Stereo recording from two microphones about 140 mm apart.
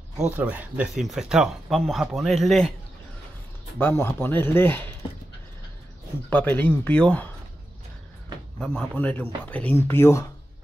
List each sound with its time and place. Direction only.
0.2 s speech: 10° right (ahead or behind)
3.8 s speech: 15° left (ahead or behind)
6.3 s speech: 10° left (ahead or behind)
8.5 s speech: 10° left (ahead or behind)